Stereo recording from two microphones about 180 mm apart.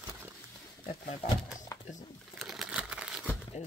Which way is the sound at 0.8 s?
45° left (ahead or behind).